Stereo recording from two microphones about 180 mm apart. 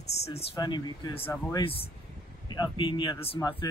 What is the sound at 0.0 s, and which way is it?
Speech, 35° left (ahead or behind).